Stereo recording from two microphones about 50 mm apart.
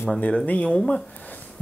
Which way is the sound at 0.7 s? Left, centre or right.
Centre.